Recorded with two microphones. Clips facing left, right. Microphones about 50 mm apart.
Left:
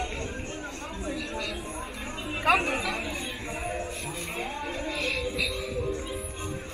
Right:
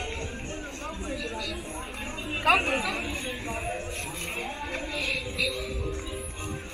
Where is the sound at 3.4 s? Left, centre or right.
Centre.